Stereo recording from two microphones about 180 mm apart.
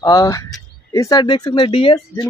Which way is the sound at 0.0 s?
20° left (ahead or behind).